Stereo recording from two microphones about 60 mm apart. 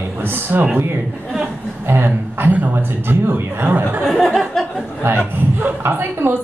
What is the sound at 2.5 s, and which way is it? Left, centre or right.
A woman's voice, right.